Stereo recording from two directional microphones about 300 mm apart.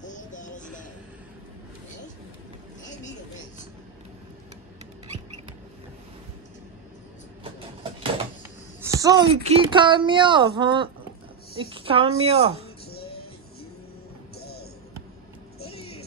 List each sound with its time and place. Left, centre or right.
0.0 s music: left
7.4 s vehicle: centre
8.8 s speech: centre
14.3 s music: left
15.6 s a sound: centre